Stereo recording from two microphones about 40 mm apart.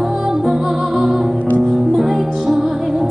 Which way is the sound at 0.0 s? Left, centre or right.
Centre.